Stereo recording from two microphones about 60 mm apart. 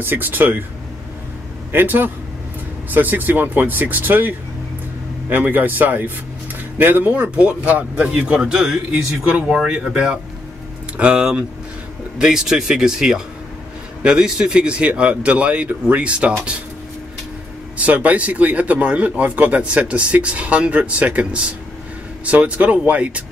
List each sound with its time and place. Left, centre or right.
0.0 s speech: right
1.7 s speech: right
17.7 s speech: right